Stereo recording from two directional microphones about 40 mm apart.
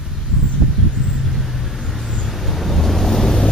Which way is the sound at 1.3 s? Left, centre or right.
Centre.